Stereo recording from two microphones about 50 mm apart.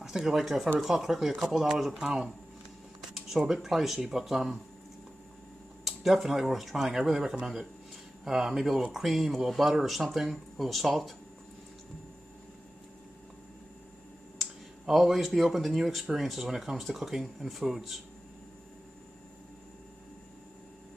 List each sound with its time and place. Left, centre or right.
0.0 s speech: centre
2.0 s speech: centre
3.0 s speech: centre
5.9 s speech: centre
14.4 s speech: centre